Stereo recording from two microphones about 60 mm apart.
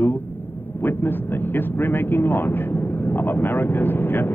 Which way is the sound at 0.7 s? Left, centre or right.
Left.